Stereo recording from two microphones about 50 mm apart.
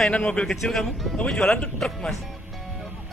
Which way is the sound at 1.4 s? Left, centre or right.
Centre.